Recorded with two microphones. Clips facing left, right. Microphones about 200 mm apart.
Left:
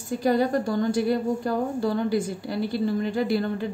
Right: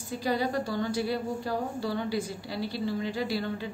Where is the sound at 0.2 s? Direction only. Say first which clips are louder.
Left 6 dB; 50° left (ahead or behind).